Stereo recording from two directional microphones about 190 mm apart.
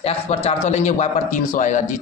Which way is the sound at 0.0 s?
35° left (ahead or behind).